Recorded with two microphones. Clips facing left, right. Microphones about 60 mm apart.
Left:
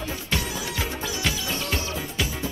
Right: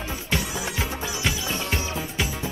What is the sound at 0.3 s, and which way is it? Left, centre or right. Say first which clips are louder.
Music: right 2 dB; right.